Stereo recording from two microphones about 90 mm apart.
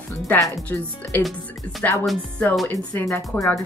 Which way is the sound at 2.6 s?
25° left (ahead or behind).